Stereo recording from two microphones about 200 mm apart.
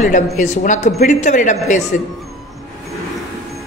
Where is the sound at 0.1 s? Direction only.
40° left (ahead or behind).